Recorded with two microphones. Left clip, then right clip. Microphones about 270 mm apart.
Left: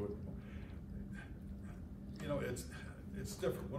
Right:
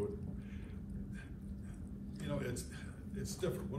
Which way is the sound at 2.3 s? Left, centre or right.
Centre.